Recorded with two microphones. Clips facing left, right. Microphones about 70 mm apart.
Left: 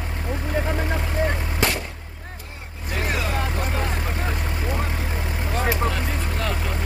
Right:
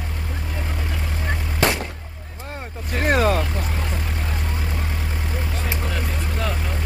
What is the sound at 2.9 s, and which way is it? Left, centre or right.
Vehicle, right.